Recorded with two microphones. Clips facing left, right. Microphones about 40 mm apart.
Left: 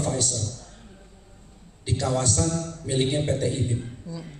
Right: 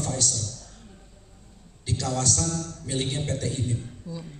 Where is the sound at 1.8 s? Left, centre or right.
Left.